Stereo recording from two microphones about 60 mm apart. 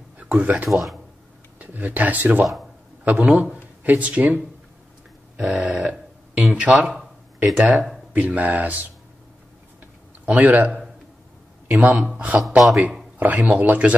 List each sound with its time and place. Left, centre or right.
0.2 s speech: right
0.7 s a man's voice: centre
1.6 s speech: right
5.4 s speech: centre
10.2 s speech: right
11.6 s a sound: right
12.1 s speech: right
12.4 s a man's voice: centre
13.2 s speech: right